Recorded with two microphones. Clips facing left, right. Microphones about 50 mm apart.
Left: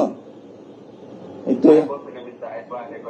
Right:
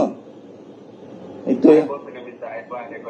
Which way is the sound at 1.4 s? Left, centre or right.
Right.